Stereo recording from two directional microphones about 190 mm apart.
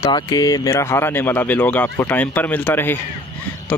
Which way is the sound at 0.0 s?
20° left (ahead or behind).